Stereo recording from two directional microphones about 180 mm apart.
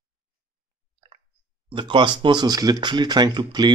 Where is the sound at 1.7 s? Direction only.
25° right (ahead or behind).